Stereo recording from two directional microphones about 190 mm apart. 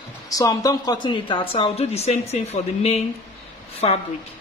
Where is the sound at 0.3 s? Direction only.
20° left (ahead or behind).